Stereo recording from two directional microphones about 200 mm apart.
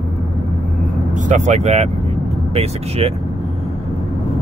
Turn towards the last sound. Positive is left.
turn(degrees=-30)  # may be behind; listen again after turning